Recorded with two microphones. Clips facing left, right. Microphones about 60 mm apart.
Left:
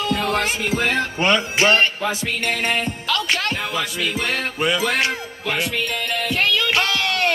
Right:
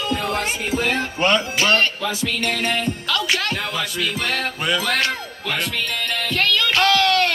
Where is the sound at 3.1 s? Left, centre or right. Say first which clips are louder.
Left 1 dB; centre.